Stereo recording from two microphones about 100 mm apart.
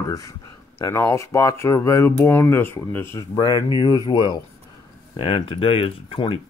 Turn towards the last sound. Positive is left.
turn(degrees=65)  # may be behind; listen again after turning